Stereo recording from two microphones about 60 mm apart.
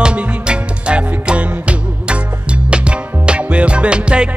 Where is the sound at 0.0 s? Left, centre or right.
Centre.